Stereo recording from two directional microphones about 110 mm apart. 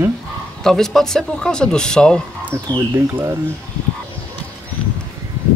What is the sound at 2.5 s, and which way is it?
Speech, 25° right (ahead or behind).